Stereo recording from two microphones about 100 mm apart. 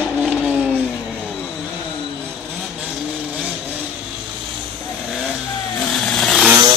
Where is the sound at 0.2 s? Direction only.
5° right (ahead or behind).